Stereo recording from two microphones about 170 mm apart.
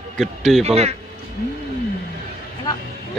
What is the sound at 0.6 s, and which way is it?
Speech, 40° right (ahead or behind).